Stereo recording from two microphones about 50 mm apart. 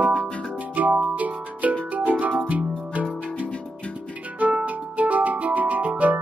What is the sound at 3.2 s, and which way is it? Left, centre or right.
Music, right.